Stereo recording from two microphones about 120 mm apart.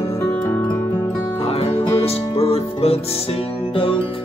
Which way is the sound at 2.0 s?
55° left (ahead or behind).